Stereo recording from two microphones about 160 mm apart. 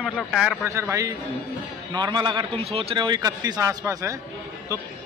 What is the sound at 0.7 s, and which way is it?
A man's voice, 20° right (ahead or behind).